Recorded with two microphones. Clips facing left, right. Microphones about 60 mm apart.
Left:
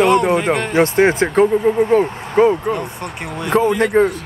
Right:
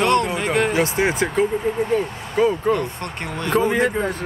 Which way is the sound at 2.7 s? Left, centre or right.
Centre.